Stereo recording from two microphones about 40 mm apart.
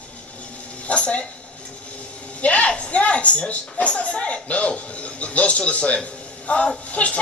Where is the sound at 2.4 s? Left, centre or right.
Left.